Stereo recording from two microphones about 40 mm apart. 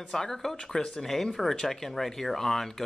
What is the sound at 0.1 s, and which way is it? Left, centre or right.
Speech, centre.